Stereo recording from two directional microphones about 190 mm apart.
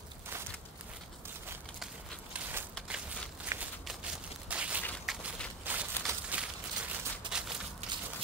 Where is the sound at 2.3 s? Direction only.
5° right (ahead or behind).